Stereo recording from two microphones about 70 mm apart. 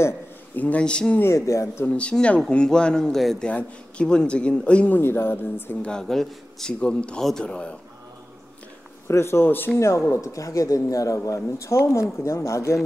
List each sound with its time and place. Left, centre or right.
0.6 s speech: centre
1.2 s speech: left
1.9 s speech: centre
3.4 s speech: centre
4.9 s speech: left
5.8 s speech: centre
9.0 s speech: left